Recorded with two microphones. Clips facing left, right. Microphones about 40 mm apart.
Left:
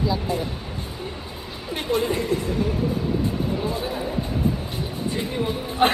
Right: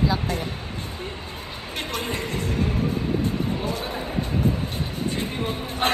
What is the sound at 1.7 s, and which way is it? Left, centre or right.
Speech, right.